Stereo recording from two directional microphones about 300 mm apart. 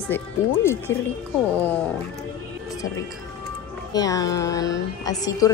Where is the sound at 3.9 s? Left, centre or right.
Centre.